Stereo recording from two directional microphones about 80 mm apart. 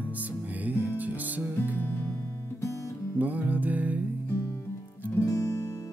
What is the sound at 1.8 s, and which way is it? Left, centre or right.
Music, left.